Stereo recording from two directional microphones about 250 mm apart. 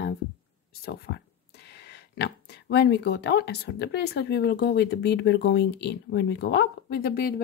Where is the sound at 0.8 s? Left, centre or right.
Left.